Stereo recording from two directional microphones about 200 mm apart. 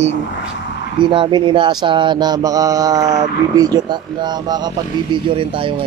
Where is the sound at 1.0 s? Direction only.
25° right (ahead or behind).